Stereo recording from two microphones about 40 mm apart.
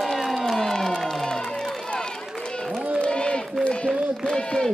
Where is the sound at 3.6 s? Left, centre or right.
Left.